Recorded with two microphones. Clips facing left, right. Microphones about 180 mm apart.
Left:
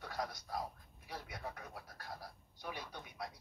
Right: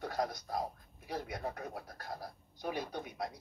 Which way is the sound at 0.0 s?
45° right (ahead or behind).